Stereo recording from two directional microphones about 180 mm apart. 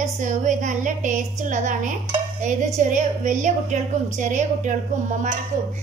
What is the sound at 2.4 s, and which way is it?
A woman's voice, 40° right (ahead or behind).